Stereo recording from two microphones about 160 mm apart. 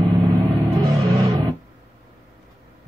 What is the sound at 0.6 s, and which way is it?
Music, 20° right (ahead or behind).